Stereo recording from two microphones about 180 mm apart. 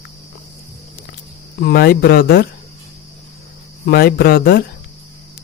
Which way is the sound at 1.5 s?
60° left (ahead or behind).